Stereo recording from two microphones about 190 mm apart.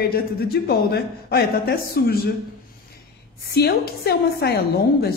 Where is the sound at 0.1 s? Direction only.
55° left (ahead or behind).